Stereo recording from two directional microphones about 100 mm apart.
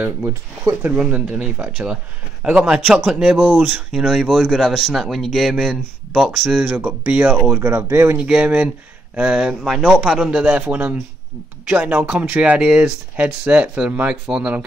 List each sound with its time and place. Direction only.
0.3 s speech: 30° right (ahead or behind)
0.9 s speech: 10° right (ahead or behind)
7.6 s speech: 25° right (ahead or behind)
8.2 s speech: 15° right (ahead or behind)
10.3 s speech: 15° right (ahead or behind)